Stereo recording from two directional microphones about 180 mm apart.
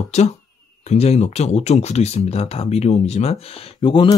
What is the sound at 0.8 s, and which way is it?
Speech, 35° left (ahead or behind).